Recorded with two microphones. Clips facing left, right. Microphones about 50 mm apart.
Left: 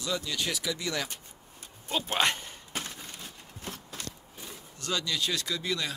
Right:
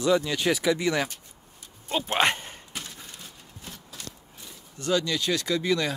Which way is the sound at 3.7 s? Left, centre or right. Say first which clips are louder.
Left 3 dB; left.